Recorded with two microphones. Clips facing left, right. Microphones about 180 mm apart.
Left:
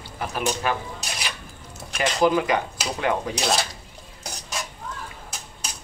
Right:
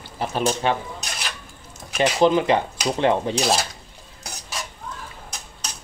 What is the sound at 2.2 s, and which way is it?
Speech, 25° right (ahead or behind).